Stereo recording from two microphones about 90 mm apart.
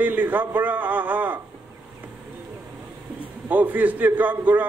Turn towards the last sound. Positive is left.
turn(degrees=-20)  # may be behind; listen again after turning